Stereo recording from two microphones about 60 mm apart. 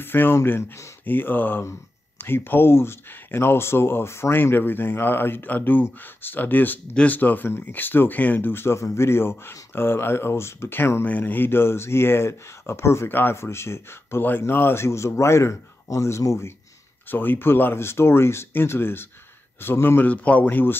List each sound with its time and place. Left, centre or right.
0.0 s speech: left
1.0 s speech: left
6.9 s speech: centre
7.2 s speech: left
8.7 s a man's voice: left
11.1 s a man's voice: left
14.2 s a man's voice: left
17.1 s speech: left